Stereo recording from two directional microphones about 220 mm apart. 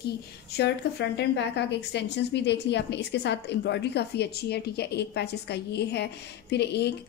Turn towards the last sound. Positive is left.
turn(degrees=50)  # may be behind; listen again after turning